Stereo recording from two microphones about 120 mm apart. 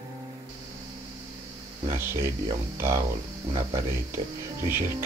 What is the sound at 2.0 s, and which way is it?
Speech, 20° right (ahead or behind).